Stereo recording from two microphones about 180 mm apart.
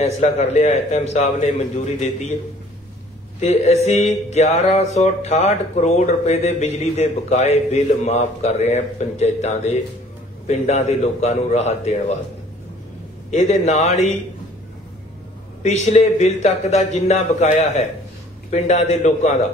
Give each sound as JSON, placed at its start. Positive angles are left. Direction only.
{"t": 0.0, "sound": "mantra", "side_deg": 35}
{"t": 3.3, "sound": "mantra", "side_deg": 35}
{"t": 13.3, "sound": "mantra", "side_deg": 40}
{"t": 15.6, "sound": "mantra", "side_deg": 35}